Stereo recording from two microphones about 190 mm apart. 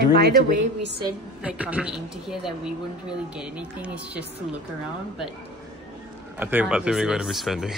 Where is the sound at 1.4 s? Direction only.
5° right (ahead or behind).